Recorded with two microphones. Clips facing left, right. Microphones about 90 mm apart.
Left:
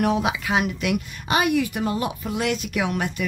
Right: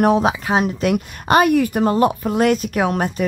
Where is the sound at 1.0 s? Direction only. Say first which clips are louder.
Right 9 dB; 50° right (ahead or behind).